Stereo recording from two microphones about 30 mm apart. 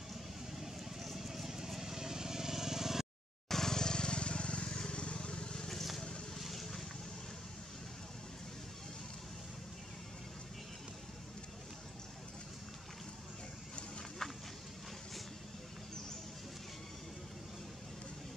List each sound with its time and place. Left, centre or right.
0.1 s vehicle: centre
3.4 s vehicle: centre; by 5.5 s left
6.3 s boat: centre
14.2 s a sound: centre